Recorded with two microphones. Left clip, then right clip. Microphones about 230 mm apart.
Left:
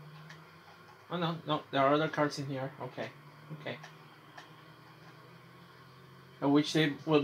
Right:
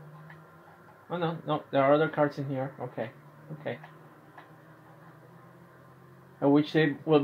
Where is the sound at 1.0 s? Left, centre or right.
Right.